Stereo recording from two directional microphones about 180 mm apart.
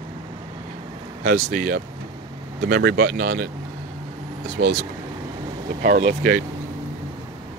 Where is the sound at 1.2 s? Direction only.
50° right (ahead or behind).